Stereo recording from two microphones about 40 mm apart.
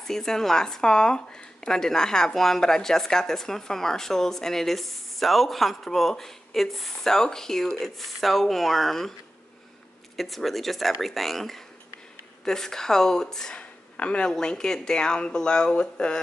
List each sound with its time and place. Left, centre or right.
0.0 s speech: centre
8.0 s speech: centre
10.1 s speech: centre
13.6 s a sound: left
14.2 s speech: centre